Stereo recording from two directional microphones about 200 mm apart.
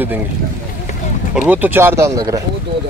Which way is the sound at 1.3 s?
5° right (ahead or behind).